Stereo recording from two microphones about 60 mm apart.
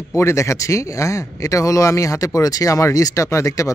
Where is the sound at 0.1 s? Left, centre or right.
Left.